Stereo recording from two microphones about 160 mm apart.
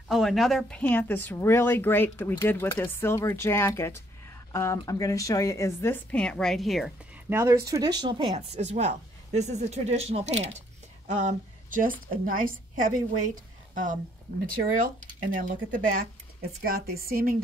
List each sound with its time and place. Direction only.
0.1 s speech: centre (ahead or behind)
7.2 s a woman's voice: 15° right (ahead or behind); by 16.1 s 60° right (ahead or behind)
16.6 s a woman's voice: 75° right (ahead or behind)